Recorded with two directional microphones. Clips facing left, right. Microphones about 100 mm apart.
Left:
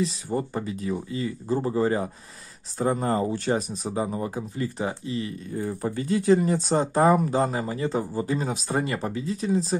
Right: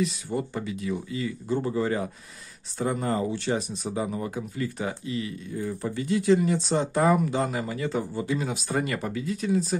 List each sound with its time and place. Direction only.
0.0 s speech: 35° left (ahead or behind)